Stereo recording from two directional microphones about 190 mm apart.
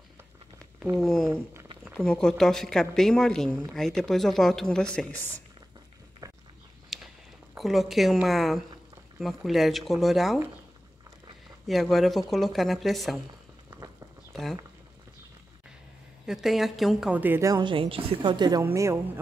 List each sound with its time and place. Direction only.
0.9 s speech: centre (ahead or behind)
1.3 s speech: 15° right (ahead or behind)
2.0 s speech: 5° left (ahead or behind)
6.2 s a sound: 15° right (ahead or behind)
6.9 s a sound: centre (ahead or behind)
7.5 s speech: centre (ahead or behind)
11.6 s speech: centre (ahead or behind)
14.3 s speech: centre (ahead or behind)
16.3 s a woman's voice: centre (ahead or behind)